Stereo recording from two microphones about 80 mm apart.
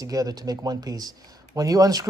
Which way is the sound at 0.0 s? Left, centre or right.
Right.